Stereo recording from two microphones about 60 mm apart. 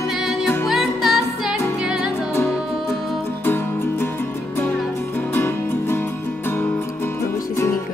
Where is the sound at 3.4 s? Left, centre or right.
Left.